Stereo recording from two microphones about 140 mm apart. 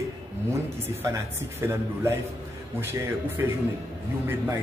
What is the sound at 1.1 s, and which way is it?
A man's voice, 20° right (ahead or behind).